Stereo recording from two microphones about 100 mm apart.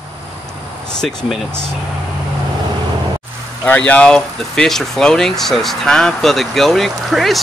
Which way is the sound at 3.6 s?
15° left (ahead or behind).